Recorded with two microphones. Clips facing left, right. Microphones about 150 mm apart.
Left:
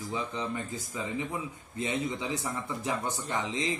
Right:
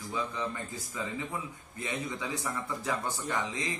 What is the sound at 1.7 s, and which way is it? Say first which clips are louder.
Speech: left 5 dB; 25° left (ahead or behind).